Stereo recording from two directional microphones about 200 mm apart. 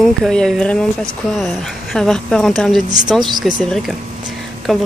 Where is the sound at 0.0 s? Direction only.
5° left (ahead or behind).